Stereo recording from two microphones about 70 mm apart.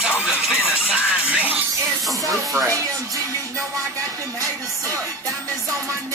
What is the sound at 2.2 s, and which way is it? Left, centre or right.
Music, right.